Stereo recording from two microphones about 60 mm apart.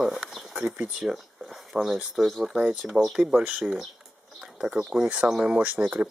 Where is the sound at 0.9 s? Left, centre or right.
Centre.